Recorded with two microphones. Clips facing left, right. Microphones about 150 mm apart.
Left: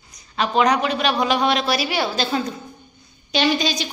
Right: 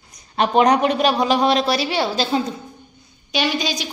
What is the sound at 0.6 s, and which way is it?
Speech, 50° right (ahead or behind).